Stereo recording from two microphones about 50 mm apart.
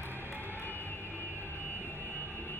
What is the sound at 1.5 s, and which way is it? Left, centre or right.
Vehicle, left.